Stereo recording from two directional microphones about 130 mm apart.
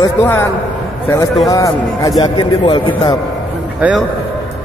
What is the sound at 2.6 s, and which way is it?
Speech, 45° left (ahead or behind).